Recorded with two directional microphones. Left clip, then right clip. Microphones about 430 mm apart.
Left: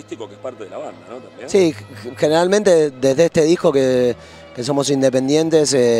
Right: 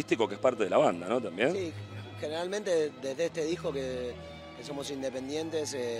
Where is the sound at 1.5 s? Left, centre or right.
Left.